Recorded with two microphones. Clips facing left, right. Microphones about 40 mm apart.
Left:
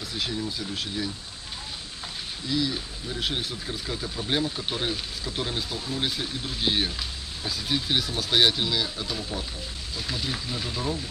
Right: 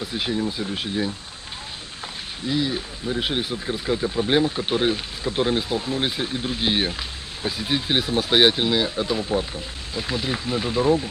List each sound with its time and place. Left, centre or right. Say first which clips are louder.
0.0 s speech: right 6 dB; right
2.4 s speech: right 4 dB; right